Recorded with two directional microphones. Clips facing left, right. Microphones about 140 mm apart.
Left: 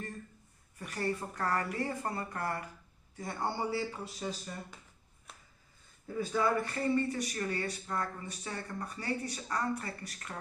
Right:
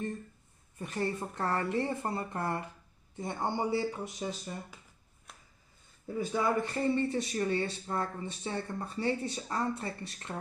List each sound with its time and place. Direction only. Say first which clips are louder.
0.7 s speech: right 2 dB; 25° right (ahead or behind)
6.1 s speech: right 1 dB; 20° right (ahead or behind)